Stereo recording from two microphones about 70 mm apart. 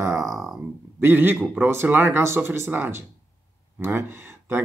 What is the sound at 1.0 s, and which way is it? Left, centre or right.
Speech, right.